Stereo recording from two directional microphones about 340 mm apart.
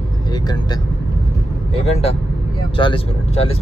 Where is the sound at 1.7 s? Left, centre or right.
Centre.